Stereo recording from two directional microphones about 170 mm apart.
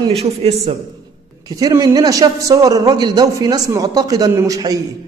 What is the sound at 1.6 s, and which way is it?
A man's voice, 20° right (ahead or behind).